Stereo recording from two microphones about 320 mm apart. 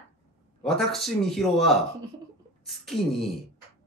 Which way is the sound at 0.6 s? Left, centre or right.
Centre.